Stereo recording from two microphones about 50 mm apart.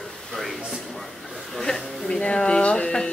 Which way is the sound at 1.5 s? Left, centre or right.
Centre.